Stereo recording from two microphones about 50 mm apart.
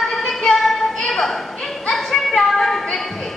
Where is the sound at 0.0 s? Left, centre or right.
Centre.